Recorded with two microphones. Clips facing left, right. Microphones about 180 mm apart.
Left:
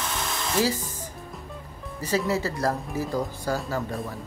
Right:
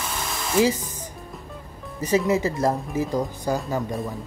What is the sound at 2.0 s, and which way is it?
Speech, 20° right (ahead or behind).